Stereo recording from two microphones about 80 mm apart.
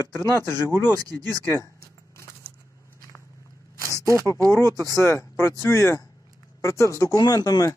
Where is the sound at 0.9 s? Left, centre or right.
Right.